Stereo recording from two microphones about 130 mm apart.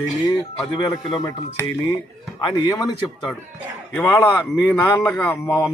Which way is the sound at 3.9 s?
15° left (ahead or behind).